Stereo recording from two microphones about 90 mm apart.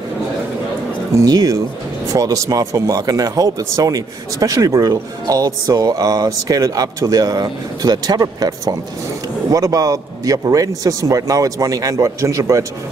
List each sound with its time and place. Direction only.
1.1 s a man's voice: 45° right (ahead or behind)